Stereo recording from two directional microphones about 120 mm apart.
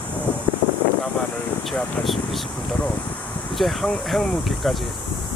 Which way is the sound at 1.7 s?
Centre (ahead or behind).